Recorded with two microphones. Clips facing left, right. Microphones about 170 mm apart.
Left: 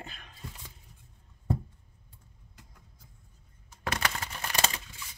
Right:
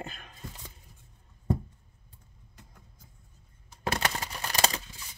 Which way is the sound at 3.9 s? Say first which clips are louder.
Right 2 dB; 30° right (ahead or behind).